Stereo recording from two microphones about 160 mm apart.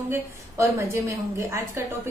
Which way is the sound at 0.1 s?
15° right (ahead or behind).